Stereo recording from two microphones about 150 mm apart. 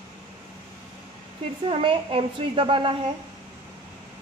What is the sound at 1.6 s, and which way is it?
A woman's voice, 35° right (ahead or behind).